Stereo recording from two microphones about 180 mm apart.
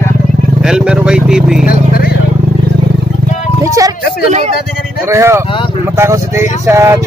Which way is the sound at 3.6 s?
20° right (ahead or behind).